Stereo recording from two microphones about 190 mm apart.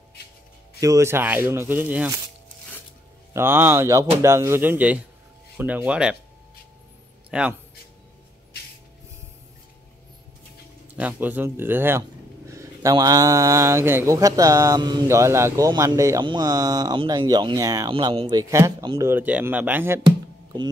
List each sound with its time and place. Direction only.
0.7 s speech: 15° right (ahead or behind)
3.3 s speech: 10° right (ahead or behind)
7.2 s a man's voice: 5° right (ahead or behind)
11.0 s speech: 10° right (ahead or behind)